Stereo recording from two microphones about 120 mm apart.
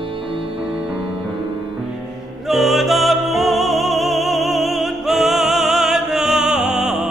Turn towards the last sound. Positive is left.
turn(degrees=-5)  # may be behind; listen again after turning